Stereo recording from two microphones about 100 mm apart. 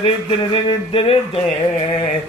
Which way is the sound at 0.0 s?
60° left (ahead or behind).